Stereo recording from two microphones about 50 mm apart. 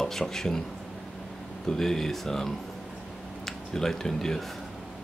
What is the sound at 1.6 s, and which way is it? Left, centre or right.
Speech, centre.